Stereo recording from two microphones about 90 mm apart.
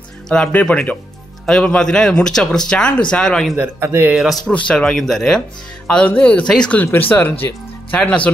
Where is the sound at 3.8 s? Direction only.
25° right (ahead or behind).